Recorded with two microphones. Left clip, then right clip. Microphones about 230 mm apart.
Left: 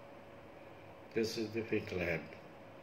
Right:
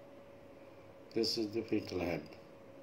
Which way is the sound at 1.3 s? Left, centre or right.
Right.